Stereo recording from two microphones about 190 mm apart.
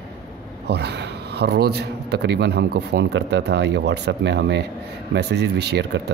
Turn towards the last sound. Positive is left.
turn(degrees=-60)  # may be behind; listen again after turning